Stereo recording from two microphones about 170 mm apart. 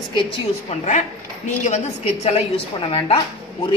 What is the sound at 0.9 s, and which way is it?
Speech, 45° left (ahead or behind).